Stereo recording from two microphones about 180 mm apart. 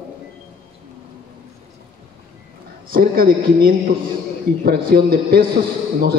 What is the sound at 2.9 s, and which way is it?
A man's voice, 55° right (ahead or behind).